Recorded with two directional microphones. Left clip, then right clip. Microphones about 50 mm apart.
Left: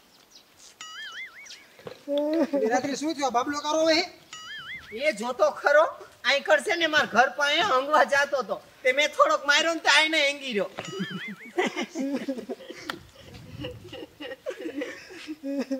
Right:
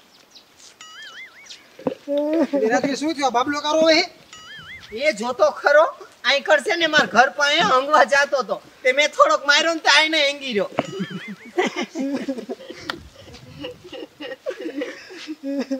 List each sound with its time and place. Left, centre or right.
0.7 s music: centre
2.1 s speech: left
2.6 s a man's voice: right
4.0 s music: centre
4.9 s a woman's voice: centre
6.9 s a woman's voice: centre; by 10.7 s left
10.9 s a sound: centre
11.5 s a sound: left
11.9 s a sound: left
15.4 s speech: left